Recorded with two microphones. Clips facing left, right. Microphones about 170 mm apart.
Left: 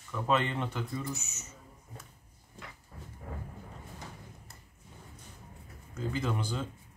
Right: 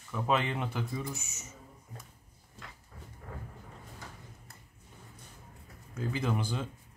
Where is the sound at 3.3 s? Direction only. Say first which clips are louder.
Left 2 dB; 10° left (ahead or behind).